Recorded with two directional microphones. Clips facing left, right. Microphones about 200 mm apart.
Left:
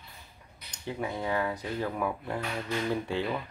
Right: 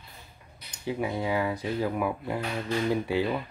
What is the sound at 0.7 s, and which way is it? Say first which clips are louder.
Speech: right 4 dB; 10° right (ahead or behind).